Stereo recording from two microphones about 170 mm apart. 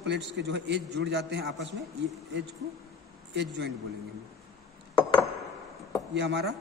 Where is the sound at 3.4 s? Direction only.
85° right.